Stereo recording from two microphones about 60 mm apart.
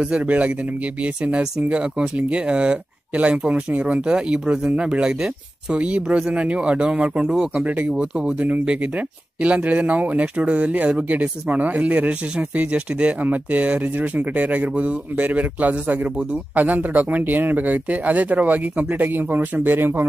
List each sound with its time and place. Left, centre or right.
0.0 s speech: right
7.6 s speech: right